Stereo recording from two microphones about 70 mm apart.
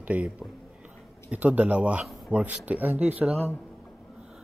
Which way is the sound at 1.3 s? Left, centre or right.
Right.